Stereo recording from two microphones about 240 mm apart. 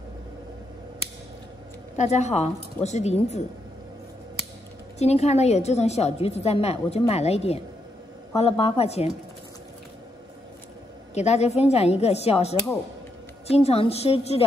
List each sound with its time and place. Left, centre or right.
2.0 s a woman's voice: left
4.9 s a woman's voice: left
11.1 s a woman's voice: left